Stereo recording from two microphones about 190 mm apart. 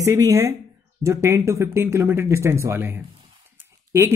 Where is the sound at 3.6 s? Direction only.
15° right (ahead or behind).